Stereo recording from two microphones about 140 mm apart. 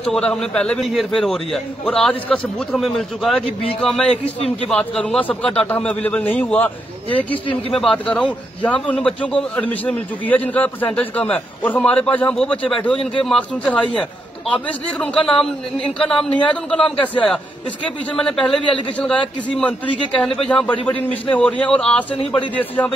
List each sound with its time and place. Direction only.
0.0 s a man's voice: 5° left (ahead or behind)
4.1 s a man's voice: 45° left (ahead or behind)
4.6 s a man's voice: 5° left (ahead or behind)
7.8 s a man's voice: 5° left (ahead or behind)
16.0 s a man's voice: 5° left (ahead or behind)